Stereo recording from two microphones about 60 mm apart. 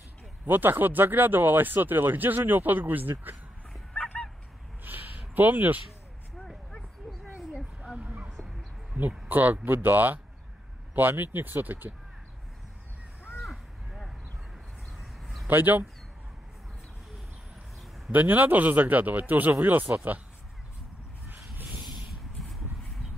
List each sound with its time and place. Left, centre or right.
0.5 s speech: right
4.8 s a sound: right
7.8 s bow-wow: centre
9.3 s speech: right
13.4 s a sound: centre
15.4 s speech: right
18.1 s speech: right
21.3 s vehicle: right